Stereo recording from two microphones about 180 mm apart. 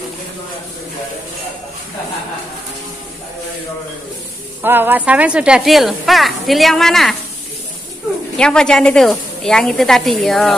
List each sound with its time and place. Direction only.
4.6 s speech: 10° right (ahead or behind)
8.4 s speech: 5° left (ahead or behind)